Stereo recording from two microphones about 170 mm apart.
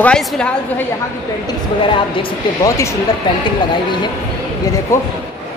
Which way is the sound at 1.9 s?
30° left (ahead or behind).